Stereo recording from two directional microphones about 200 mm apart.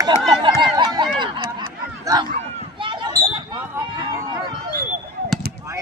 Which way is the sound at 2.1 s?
15° right (ahead or behind).